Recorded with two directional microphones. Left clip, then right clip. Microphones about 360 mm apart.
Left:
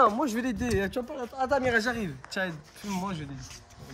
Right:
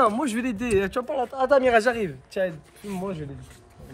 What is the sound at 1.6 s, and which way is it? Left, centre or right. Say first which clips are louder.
Speech: right 7 dB; right.